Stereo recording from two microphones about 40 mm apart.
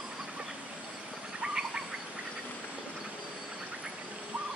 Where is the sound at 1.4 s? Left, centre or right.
Right.